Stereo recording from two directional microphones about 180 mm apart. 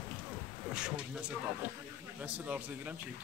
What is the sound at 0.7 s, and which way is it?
A man's voice, 5° right (ahead or behind).